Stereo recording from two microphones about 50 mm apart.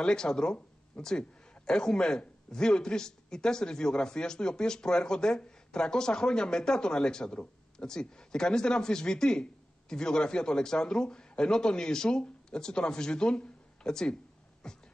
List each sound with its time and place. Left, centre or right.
0.0 s a man's voice: centre
14.6 s beatboxing: centre